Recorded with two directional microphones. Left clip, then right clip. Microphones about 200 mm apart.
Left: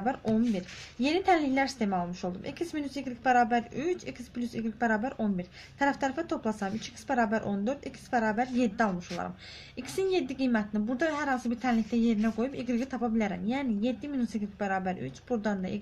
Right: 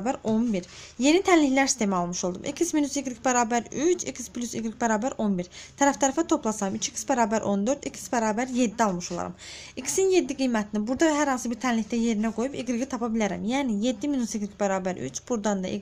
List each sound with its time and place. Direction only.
0.0 s a woman's voice: 50° right (ahead or behind)